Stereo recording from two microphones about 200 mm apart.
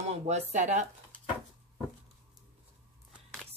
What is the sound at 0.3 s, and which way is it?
Speech, 35° right (ahead or behind).